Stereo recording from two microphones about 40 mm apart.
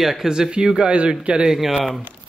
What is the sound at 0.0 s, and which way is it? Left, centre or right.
Speech, centre.